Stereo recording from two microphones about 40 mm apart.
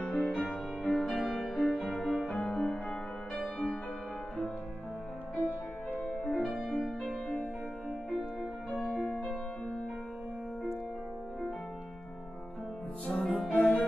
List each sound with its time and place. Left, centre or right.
0.0 s music: left
1.3 s music: centre
6.1 s music: centre
8.1 s music: centre
13.0 s music: centre
13.5 s music: left